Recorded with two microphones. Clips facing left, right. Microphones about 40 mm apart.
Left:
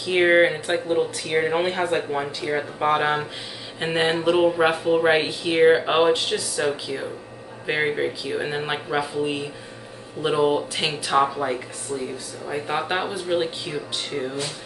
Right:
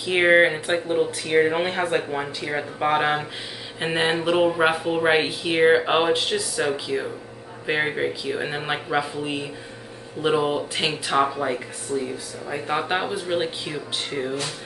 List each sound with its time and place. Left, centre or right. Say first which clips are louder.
0.0 s speech: even; centre
11.9 s speech: right 3 dB; left
12.4 s speech: even; centre